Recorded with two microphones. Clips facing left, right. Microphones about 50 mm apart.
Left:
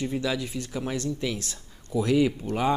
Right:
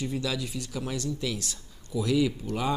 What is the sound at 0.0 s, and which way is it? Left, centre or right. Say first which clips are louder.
A man's voice: left 3 dB; left.